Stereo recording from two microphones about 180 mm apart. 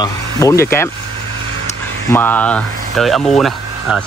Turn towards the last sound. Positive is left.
turn(degrees=0)  # may be behind; listen again after turning